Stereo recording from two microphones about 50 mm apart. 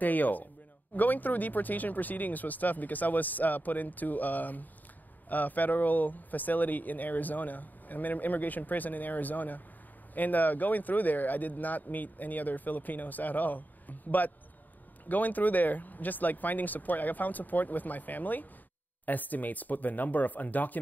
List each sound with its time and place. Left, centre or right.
0.0 s speech: left